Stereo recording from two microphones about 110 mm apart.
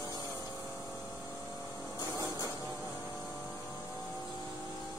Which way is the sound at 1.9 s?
35° left (ahead or behind).